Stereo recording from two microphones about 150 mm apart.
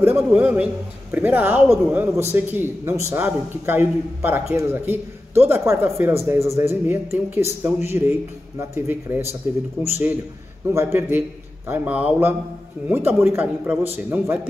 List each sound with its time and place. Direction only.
0.0 s a man's voice: 10° right (ahead or behind)
10.7 s a man's voice: 20° right (ahead or behind)